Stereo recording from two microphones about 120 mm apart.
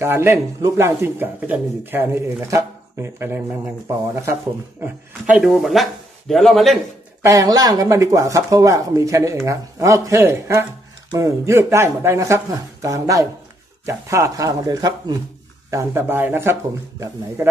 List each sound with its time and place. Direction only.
0.0 s speech: 20° right (ahead or behind)
4.8 s speech: 10° right (ahead or behind)
7.2 s speech: 30° right (ahead or behind)